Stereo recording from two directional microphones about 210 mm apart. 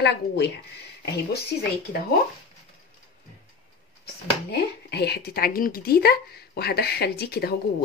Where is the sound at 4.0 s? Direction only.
50° left (ahead or behind).